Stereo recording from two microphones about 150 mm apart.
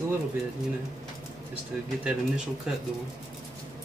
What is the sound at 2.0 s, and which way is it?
Speech, 5° right (ahead or behind).